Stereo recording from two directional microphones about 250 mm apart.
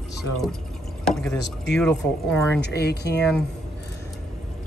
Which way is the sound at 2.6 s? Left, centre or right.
Left.